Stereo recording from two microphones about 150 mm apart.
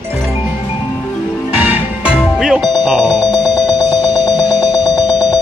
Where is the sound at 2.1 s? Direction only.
Centre (ahead or behind).